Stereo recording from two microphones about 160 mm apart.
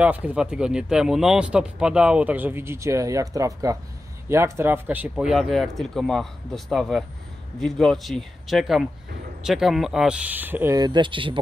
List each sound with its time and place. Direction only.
0.0 s speech: 10° right (ahead or behind); by 11.3 s 30° right (ahead or behind)